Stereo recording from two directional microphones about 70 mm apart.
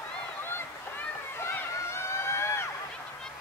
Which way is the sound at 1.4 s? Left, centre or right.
Left.